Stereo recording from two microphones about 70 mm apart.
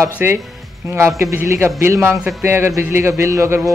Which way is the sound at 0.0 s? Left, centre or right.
Right.